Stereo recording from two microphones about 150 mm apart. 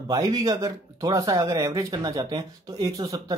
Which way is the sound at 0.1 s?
25° right (ahead or behind).